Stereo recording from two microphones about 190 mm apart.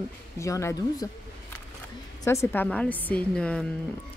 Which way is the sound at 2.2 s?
15° left (ahead or behind).